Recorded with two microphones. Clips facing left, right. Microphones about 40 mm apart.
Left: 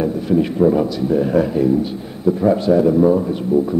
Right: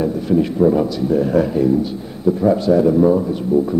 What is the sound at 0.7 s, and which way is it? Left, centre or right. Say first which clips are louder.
A man's voice: even; centre.